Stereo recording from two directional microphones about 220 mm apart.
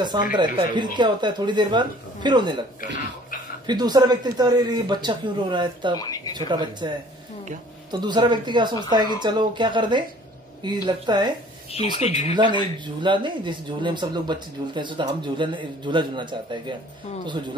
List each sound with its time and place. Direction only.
0.4 s a man's voice: 20° right (ahead or behind)
3.6 s a man's voice: 20° right (ahead or behind)
5.9 s speech: 15° left (ahead or behind)
6.3 s a man's voice: 20° right (ahead or behind)
7.9 s a man's voice: 20° right (ahead or behind)
11.7 s speech: 30° left (ahead or behind)
12.4 s a man's voice: 20° right (ahead or behind)